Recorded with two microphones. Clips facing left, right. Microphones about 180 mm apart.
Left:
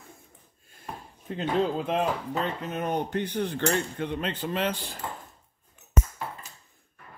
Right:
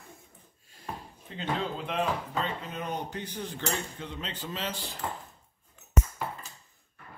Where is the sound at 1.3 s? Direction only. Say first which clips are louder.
Left 8 dB; 50° left (ahead or behind).